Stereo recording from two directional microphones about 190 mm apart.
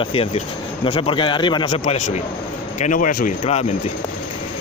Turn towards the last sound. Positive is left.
turn(degrees=35)  # may be behind; listen again after turning